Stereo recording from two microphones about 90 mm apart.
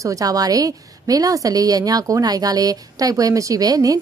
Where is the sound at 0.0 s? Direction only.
40° right (ahead or behind).